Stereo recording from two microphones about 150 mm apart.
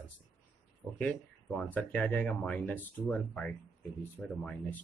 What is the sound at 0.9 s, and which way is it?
Speech, 5° left (ahead or behind).